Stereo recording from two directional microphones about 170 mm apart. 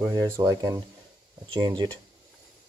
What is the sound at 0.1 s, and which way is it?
Speech, 20° right (ahead or behind).